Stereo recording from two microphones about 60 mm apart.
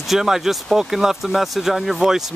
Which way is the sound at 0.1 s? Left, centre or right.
Centre.